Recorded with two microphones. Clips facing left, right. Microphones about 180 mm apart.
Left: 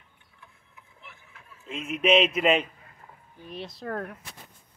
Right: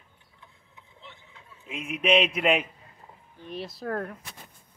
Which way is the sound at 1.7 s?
Centre (ahead or behind).